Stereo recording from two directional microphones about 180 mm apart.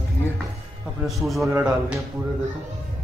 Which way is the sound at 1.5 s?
10° right (ahead or behind).